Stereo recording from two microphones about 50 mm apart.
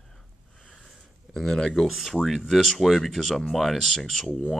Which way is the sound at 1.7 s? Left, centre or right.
Centre.